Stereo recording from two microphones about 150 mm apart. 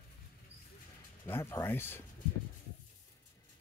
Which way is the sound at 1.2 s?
15° left (ahead or behind).